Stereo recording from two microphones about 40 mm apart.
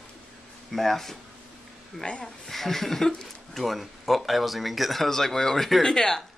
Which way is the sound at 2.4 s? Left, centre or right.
Centre.